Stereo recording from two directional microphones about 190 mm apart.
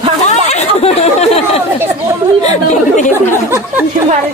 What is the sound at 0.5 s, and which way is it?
Chatter, 35° left (ahead or behind).